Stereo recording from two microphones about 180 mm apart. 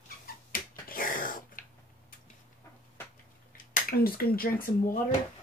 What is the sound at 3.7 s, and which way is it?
Speech, 55° left (ahead or behind).